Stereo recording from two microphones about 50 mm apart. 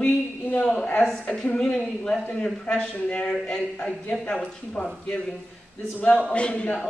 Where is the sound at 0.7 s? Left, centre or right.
Left.